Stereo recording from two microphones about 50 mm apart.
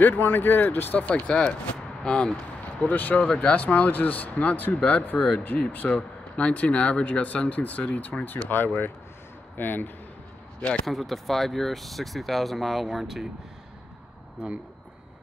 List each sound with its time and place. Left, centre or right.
0.0 s speech: left
1.0 s speech: left
2.9 s speech: left
8.5 s speech: left
10.9 s speech: centre